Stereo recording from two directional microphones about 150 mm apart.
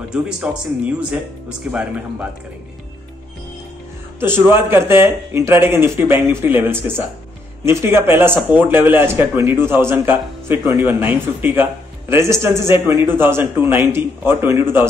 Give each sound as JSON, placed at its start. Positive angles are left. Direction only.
{"t": 0.1, "sound": "speech", "side_deg": -5}
{"t": 4.2, "sound": "speech", "side_deg": -15}